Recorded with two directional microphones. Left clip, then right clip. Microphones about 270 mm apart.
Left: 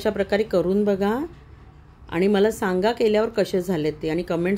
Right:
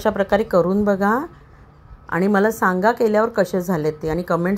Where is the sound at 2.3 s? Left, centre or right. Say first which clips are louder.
Right 4 dB; centre.